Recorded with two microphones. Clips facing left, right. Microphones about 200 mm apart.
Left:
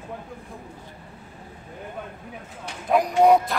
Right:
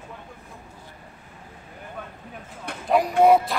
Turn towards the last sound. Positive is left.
turn(degrees=0)  # may be behind; listen again after turning